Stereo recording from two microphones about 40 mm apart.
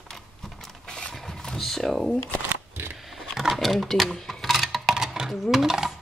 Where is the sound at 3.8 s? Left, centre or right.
Centre.